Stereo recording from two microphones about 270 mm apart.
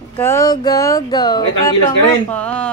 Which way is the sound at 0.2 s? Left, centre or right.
Centre.